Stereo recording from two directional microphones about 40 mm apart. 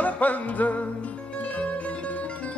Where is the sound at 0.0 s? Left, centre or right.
Left.